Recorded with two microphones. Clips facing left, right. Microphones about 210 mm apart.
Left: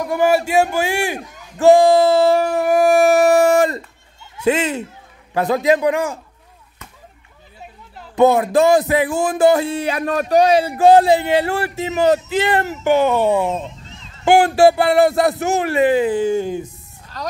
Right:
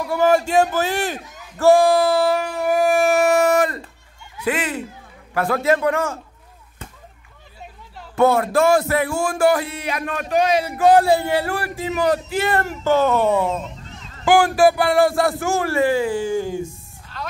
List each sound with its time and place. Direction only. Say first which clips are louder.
0.0 s a man's voice: left 1 dB; 15° left (ahead or behind)
2.4 s music: left 4 dB; 50° left (ahead or behind); by 3.8 s 25° left (ahead or behind)
4.5 s a man's voice: left 5 dB; 25° left (ahead or behind)
8.2 s speech: left 3 dB; 20° left (ahead or behind)
14.2 s speech: left 3 dB; 25° left (ahead or behind)
16.6 s a sound: right 5 dB; 40° left (ahead or behind)